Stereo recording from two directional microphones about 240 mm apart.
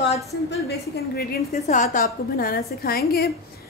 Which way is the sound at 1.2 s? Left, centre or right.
Left.